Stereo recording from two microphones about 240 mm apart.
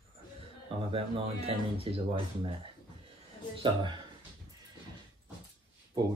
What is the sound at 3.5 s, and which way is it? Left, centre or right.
Speech, centre.